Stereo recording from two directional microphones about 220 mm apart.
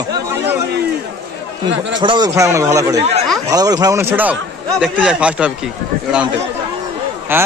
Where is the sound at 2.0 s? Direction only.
20° right (ahead or behind).